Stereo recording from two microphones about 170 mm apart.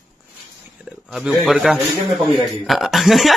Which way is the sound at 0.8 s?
5° right (ahead or behind).